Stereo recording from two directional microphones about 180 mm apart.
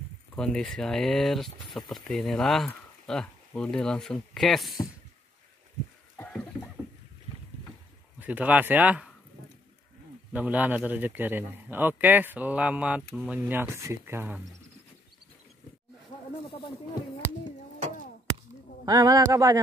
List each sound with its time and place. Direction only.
0.4 s speech: 5° left (ahead or behind)
6.1 s a sound: 5° left (ahead or behind)
8.2 s a man's voice: 10° right (ahead or behind)
10.3 s a man's voice: 10° right (ahead or behind)
18.9 s speech: 20° right (ahead or behind)